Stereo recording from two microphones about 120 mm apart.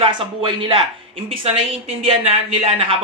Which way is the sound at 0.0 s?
45° right (ahead or behind).